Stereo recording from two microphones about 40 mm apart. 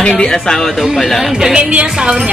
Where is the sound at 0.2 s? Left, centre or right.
Centre.